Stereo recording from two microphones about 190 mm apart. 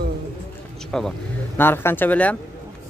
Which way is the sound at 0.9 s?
5° left (ahead or behind).